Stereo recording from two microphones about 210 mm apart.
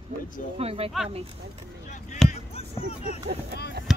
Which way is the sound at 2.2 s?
Centre (ahead or behind).